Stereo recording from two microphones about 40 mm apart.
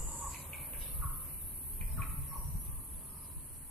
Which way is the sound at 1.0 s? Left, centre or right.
Centre.